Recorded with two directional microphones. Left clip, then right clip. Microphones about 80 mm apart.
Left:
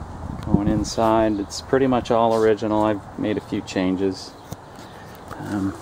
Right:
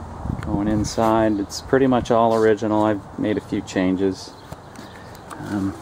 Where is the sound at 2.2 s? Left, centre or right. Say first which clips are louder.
Right 1 dB; centre.